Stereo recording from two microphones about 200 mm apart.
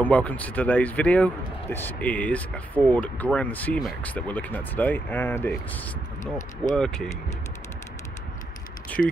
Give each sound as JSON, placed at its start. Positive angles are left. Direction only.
{"t": 0.0, "sound": "speech", "side_deg": 5}
{"t": 6.7, "sound": "mechanisms", "side_deg": 5}
{"t": 9.0, "sound": "mechanisms", "side_deg": 0}